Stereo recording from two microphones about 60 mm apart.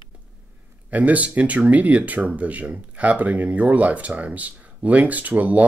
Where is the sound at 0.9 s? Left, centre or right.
Right.